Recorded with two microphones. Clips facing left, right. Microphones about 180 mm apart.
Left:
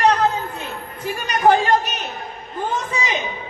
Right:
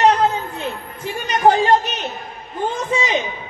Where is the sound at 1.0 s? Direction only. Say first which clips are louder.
Right 1 dB; 25° right (ahead or behind).